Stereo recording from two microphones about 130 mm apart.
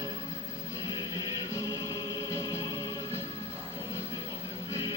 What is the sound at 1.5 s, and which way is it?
Choir, 20° left (ahead or behind).